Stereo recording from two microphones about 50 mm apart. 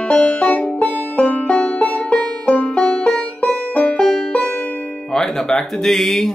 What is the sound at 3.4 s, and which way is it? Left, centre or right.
Music, left.